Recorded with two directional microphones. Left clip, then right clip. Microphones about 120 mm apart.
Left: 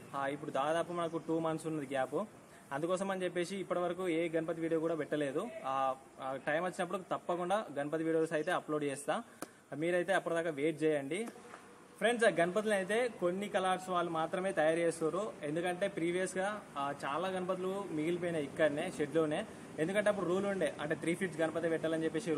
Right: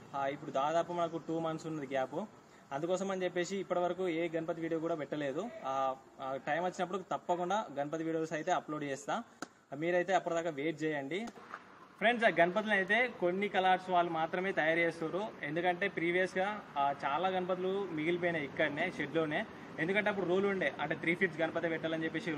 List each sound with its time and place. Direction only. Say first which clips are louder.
0.1 s a man's voice: right 1 dB; 15° left (ahead or behind)
12.0 s speech: right 2 dB; 35° left (ahead or behind)